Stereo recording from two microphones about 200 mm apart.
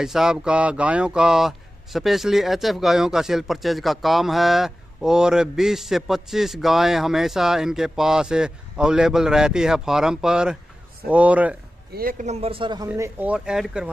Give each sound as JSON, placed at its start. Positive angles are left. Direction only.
{"t": 0.0, "sound": "speech", "side_deg": 0}
{"t": 11.9, "sound": "speech", "side_deg": -45}
{"t": 12.8, "sound": "speech", "side_deg": -15}